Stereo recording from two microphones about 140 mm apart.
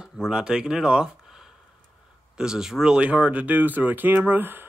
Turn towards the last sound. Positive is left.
turn(degrees=-15)  # may be behind; listen again after turning